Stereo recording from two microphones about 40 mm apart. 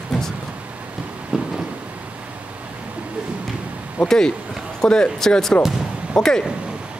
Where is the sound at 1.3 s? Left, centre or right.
Right.